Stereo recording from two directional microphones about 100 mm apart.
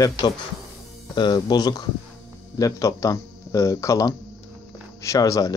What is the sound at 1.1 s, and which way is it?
Speech, 45° left (ahead or behind).